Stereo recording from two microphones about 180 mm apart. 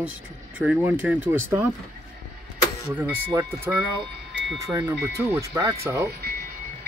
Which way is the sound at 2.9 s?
10° right (ahead or behind).